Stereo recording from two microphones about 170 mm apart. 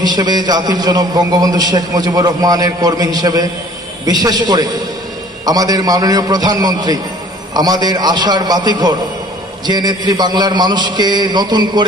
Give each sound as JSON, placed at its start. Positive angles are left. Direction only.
{"t": 0.0, "sound": "a man's voice", "side_deg": -25}